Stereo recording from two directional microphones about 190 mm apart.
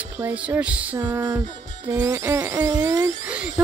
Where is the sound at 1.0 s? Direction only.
20° right (ahead or behind).